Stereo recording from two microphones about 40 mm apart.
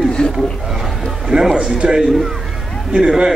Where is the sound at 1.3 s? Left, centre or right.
Centre.